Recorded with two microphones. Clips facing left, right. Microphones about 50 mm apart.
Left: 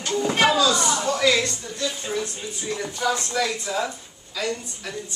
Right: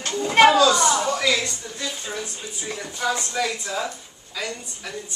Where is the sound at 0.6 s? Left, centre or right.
Right.